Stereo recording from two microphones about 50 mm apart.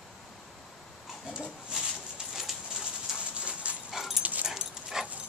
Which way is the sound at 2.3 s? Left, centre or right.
Centre.